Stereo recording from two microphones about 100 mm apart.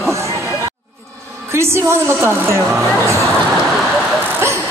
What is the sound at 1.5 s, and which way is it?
A woman's voice, 25° right (ahead or behind).